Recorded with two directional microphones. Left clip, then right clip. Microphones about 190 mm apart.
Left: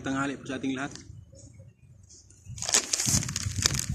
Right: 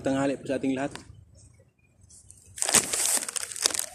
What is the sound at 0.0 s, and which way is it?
Speech, 15° left (ahead or behind).